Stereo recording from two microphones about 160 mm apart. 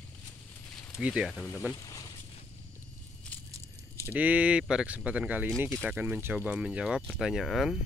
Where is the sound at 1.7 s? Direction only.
25° left (ahead or behind).